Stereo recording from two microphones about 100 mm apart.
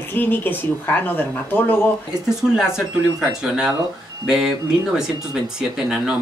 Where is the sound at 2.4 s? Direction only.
5° right (ahead or behind).